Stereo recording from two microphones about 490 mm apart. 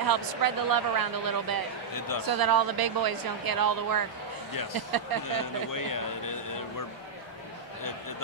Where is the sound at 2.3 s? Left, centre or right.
Right.